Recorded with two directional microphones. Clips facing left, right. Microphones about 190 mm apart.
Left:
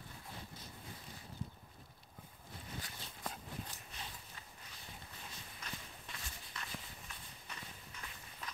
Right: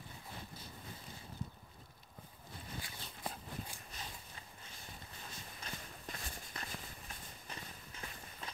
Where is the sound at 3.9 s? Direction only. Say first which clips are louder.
Right 1 dB; 40° right (ahead or behind).